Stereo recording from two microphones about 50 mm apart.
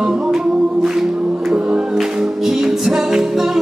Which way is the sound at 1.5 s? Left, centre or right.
Right.